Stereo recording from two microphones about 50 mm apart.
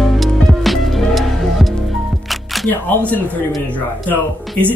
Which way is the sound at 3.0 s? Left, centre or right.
Left.